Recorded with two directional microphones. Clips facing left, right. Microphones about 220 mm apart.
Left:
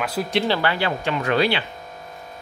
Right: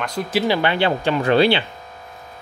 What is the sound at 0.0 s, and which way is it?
Speech, 5° left (ahead or behind).